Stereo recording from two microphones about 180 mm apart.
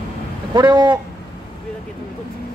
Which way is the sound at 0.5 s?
25° right (ahead or behind).